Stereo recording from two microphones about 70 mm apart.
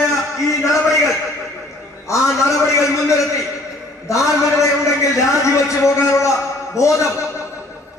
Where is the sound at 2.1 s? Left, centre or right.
Left.